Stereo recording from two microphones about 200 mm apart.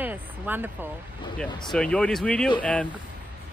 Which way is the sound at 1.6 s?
5° left (ahead or behind).